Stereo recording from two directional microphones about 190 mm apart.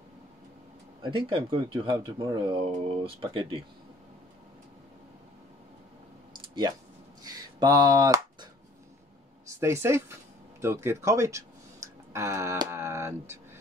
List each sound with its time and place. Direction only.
1.0 s speech: 25° right (ahead or behind)
7.2 s a sound: 20° right (ahead or behind)
9.6 s speech: 15° right (ahead or behind)